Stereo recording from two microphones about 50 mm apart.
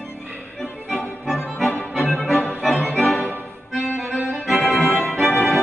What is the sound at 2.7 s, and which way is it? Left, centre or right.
Music, left.